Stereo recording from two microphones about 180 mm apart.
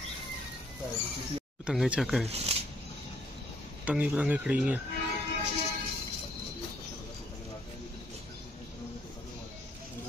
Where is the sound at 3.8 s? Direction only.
5° right (ahead or behind).